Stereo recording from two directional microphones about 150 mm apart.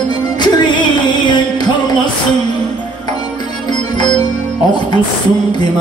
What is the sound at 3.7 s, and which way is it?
Music, 30° left (ahead or behind).